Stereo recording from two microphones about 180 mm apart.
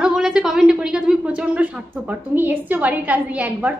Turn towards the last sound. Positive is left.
turn(degrees=-10)  # may be behind; listen again after turning